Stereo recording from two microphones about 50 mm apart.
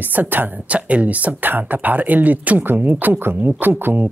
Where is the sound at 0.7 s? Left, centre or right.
Right.